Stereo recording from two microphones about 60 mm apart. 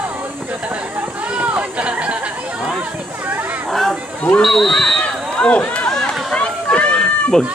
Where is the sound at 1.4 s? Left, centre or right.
Right.